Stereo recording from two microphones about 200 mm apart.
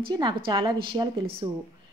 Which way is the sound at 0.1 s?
20° right (ahead or behind).